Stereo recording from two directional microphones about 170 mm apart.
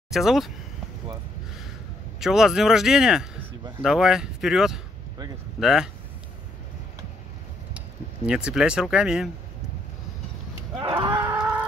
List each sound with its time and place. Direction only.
0.1 s speech: centre (ahead or behind)
2.1 s speech: 5° right (ahead or behind)
8.3 s speech: 5° right (ahead or behind)
10.8 s cattle: 25° right (ahead or behind)
11.1 s livestock: 10° right (ahead or behind)